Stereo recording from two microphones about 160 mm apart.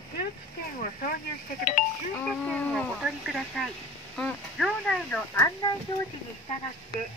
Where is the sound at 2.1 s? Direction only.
10° left (ahead or behind).